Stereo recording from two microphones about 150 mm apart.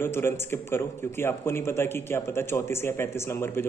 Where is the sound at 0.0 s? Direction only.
15° left (ahead or behind).